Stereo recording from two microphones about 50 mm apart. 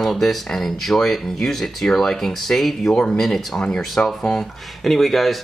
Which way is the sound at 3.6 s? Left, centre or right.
Left.